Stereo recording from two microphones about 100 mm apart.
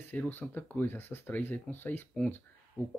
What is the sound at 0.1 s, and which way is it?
Speech, 20° left (ahead or behind).